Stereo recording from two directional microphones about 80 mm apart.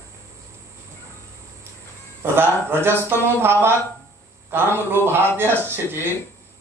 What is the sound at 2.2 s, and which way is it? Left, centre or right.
A man's voice, right.